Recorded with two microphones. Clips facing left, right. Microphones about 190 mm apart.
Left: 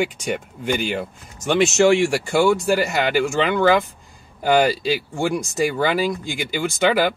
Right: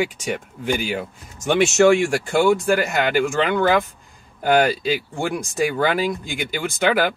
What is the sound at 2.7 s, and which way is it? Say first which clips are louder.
Speech: even; 55° right (ahead or behind).